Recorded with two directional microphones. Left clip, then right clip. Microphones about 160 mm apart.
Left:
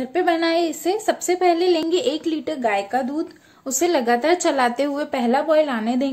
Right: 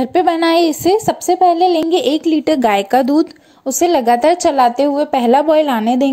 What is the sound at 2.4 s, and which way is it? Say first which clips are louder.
Speech: right 7 dB; 70° right (ahead or behind).